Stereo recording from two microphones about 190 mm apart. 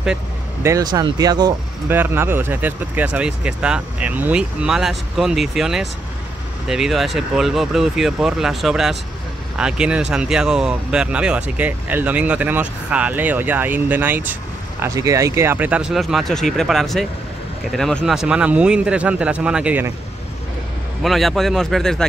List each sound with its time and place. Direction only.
0.0 s vehicle: 5° right (ahead or behind)
0.7 s speech: 20° right (ahead or behind)
21.0 s speech: centre (ahead or behind)